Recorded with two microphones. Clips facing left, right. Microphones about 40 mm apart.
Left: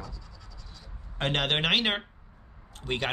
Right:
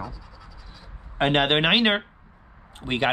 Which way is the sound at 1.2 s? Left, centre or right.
Right.